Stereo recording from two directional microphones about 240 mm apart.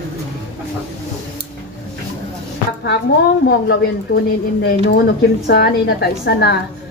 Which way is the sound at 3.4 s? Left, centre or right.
Left.